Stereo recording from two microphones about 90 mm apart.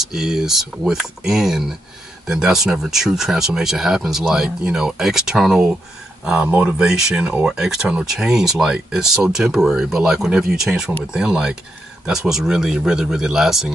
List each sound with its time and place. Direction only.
0.0 s speech: 5° right (ahead or behind)